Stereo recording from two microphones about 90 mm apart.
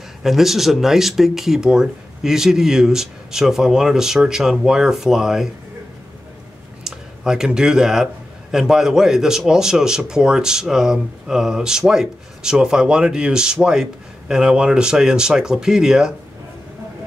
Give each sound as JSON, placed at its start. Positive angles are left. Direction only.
{"t": 0.2, "sound": "speech", "side_deg": -5}
{"t": 6.8, "sound": "speech", "side_deg": -5}